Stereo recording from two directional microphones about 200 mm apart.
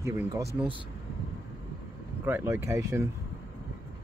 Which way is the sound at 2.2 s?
10° right (ahead or behind).